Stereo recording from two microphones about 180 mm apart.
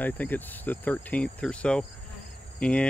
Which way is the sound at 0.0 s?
10° left (ahead or behind).